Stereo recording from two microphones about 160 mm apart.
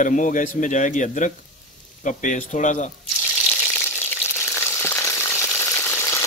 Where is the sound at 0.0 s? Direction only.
55° left (ahead or behind).